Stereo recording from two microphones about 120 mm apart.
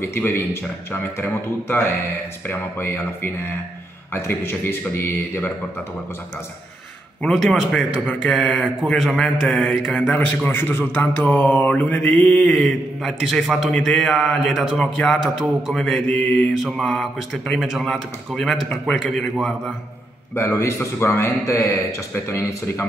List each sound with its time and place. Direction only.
0.0 s a man's voice: 15° left (ahead or behind)
7.2 s a man's voice: 5° left (ahead or behind)
20.3 s a man's voice: 25° left (ahead or behind)